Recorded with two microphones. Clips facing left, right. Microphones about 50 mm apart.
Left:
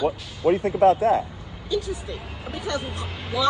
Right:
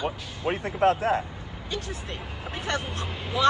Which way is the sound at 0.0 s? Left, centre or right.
Right.